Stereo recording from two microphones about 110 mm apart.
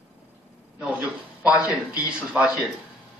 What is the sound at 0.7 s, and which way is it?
Speech, 10° right (ahead or behind).